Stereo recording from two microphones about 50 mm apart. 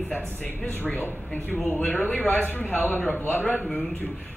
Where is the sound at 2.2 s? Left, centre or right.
Left.